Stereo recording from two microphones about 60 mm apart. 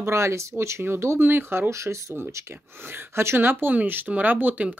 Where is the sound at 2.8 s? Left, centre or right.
Right.